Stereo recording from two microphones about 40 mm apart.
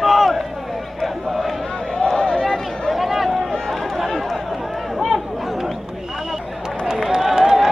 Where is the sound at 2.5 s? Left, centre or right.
Centre.